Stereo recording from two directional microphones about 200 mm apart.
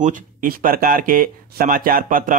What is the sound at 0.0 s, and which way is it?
Speech, 40° right (ahead or behind).